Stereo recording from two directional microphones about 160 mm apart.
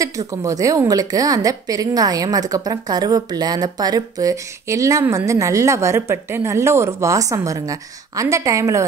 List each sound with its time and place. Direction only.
0.0 s a woman's voice: 20° right (ahead or behind)